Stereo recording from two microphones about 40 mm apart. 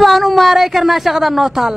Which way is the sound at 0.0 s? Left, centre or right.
Centre.